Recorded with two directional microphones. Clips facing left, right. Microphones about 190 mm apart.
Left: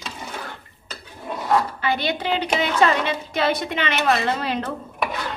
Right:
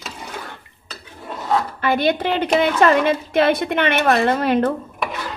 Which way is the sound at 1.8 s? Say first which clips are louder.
Right 5 dB; 55° right (ahead or behind).